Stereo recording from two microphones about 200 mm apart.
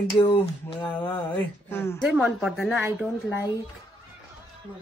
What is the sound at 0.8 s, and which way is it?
Speech, 10° left (ahead or behind).